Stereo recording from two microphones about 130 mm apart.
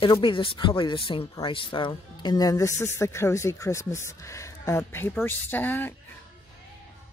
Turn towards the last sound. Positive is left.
turn(degrees=15)  # may be behind; listen again after turning